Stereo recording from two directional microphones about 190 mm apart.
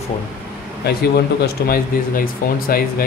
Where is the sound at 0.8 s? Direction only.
55° left (ahead or behind).